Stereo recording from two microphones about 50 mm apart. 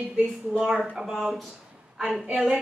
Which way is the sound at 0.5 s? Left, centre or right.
Centre.